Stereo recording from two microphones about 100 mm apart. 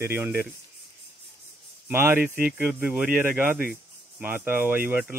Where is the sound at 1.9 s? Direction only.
25° right (ahead or behind).